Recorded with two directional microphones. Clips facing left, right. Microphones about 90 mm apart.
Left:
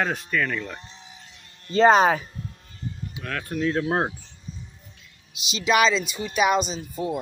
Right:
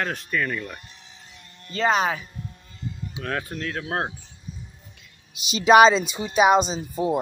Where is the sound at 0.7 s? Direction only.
25° left (ahead or behind).